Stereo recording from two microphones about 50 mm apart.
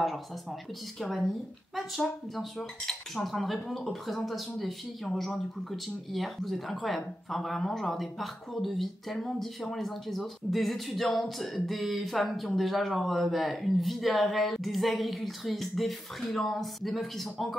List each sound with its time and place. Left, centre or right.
0.9 s speech: centre